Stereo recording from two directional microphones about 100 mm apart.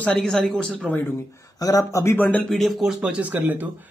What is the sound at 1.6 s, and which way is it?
Speech, 35° left (ahead or behind).